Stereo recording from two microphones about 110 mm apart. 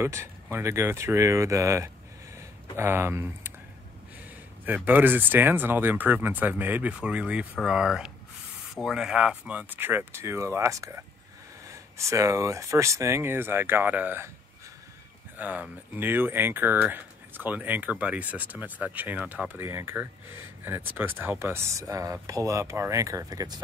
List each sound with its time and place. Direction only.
0.0 s speech: 25° right (ahead or behind)
4.6 s speech: 15° right (ahead or behind)
15.3 s speech: 15° right (ahead or behind); by 23.6 s 35° right (ahead or behind)